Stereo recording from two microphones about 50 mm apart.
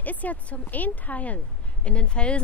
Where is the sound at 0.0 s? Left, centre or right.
Left.